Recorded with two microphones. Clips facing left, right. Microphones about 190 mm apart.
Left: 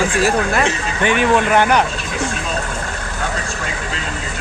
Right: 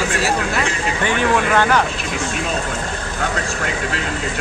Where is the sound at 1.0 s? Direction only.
15° left (ahead or behind).